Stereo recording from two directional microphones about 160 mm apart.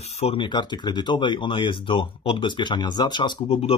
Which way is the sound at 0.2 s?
35° left (ahead or behind).